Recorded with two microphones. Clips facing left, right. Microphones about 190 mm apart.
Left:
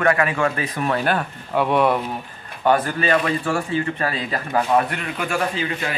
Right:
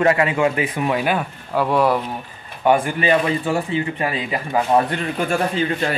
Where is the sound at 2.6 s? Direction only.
10° right (ahead or behind).